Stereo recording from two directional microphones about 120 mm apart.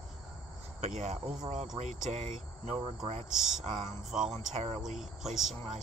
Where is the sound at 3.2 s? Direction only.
5° right (ahead or behind).